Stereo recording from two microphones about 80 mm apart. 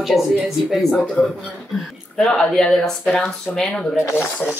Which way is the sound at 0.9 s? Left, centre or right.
Centre.